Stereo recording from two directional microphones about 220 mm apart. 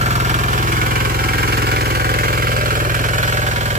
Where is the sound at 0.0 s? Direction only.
30° right (ahead or behind).